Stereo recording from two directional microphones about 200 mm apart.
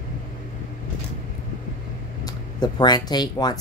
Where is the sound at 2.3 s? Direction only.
20° left (ahead or behind).